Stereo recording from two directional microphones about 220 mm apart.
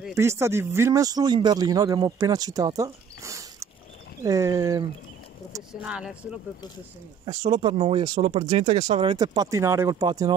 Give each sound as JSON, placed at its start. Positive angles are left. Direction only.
{"t": 0.1, "sound": "speech", "side_deg": -15}
{"t": 5.7, "sound": "speech", "side_deg": -5}
{"t": 7.5, "sound": "speech", "side_deg": -25}